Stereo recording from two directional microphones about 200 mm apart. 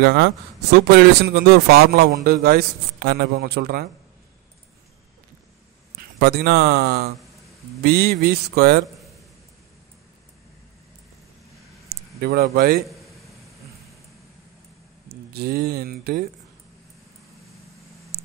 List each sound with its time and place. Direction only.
0.0 s a man's voice: 55° right (ahead or behind)
6.1 s a man's voice: 55° right (ahead or behind)
11.9 s speech: 50° right (ahead or behind)
12.8 s a sound: centre (ahead or behind)
15.0 s speech: 50° right (ahead or behind)